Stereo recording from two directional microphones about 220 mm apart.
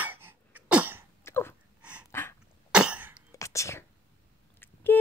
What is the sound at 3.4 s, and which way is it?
Whispering, 15° left (ahead or behind).